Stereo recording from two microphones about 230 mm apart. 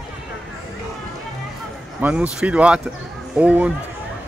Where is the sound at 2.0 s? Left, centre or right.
Centre.